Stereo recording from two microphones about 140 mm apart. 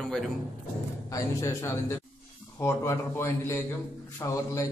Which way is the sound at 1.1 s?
20° left (ahead or behind).